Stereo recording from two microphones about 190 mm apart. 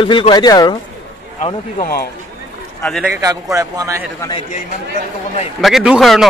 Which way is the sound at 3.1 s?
15° right (ahead or behind).